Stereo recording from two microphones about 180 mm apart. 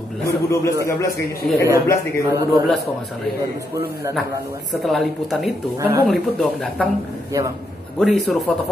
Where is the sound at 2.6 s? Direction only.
Centre (ahead or behind).